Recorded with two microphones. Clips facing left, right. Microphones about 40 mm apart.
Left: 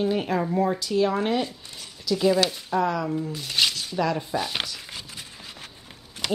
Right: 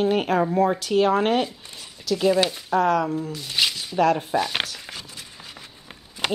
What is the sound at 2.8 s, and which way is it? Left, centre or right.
Speech, right.